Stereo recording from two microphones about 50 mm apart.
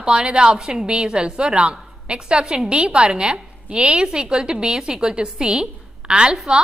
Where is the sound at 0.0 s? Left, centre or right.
Centre.